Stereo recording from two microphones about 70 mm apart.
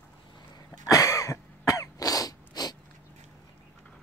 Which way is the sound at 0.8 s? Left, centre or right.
Left.